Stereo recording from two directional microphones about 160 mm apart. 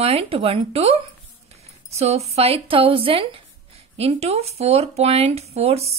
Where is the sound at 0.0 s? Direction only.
40° right (ahead or behind).